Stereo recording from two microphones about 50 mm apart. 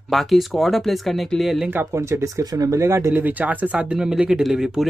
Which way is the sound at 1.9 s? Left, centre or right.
Right.